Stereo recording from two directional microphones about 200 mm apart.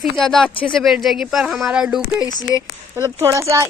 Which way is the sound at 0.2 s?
5° left (ahead or behind).